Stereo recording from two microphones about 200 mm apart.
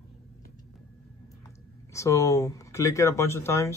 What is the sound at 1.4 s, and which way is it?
Speech, 15° left (ahead or behind).